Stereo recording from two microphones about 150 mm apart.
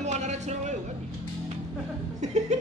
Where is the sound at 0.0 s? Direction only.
50° right (ahead or behind).